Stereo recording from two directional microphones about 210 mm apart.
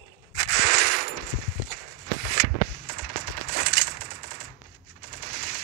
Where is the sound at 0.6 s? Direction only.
50° right (ahead or behind).